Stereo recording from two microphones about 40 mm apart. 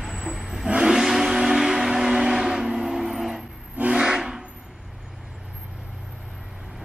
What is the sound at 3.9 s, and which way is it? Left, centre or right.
Steam whistle, centre.